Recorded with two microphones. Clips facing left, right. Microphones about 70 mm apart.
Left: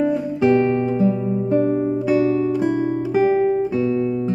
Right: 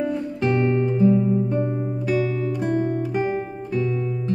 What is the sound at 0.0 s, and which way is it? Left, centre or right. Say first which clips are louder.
Music: left 6 dB; centre.